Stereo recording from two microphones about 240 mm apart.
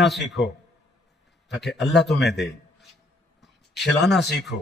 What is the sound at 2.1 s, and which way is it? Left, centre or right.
Speech, left.